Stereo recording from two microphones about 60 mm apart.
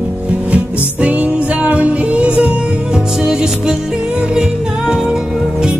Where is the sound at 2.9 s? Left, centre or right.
Centre.